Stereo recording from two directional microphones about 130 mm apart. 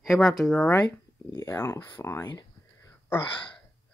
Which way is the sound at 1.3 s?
20° left (ahead or behind).